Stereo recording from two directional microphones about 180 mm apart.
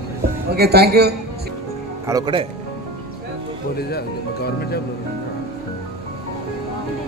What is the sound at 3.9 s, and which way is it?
Speech, 60° left (ahead or behind).